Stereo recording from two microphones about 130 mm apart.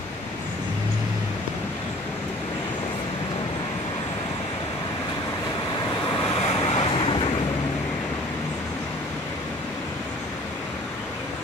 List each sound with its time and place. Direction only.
6.4 s vehicle: 50° left (ahead or behind)